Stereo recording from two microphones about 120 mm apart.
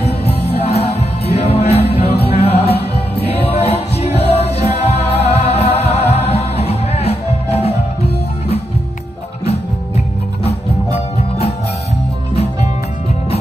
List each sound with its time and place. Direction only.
0.0 s music: 60° left (ahead or behind)
9.4 s music: 60° left (ahead or behind)